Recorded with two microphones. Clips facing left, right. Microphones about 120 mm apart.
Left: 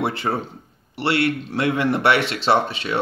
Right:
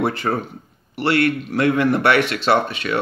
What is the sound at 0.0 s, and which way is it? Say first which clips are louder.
Speech: right 2 dB; 25° left (ahead or behind).